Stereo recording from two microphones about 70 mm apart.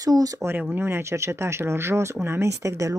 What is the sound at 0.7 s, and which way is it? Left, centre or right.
Speech, right.